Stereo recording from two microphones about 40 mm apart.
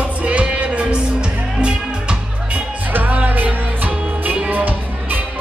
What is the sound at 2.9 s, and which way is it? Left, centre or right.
Music, right.